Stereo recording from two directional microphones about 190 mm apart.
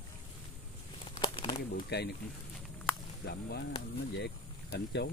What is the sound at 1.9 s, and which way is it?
Speech, 60° left (ahead or behind).